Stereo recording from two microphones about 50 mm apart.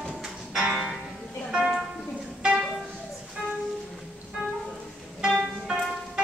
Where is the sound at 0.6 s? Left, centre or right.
Centre.